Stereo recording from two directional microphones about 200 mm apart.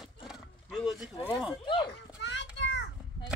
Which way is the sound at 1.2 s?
Centre (ahead or behind).